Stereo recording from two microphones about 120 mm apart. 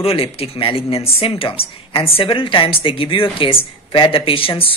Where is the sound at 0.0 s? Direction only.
55° left (ahead or behind).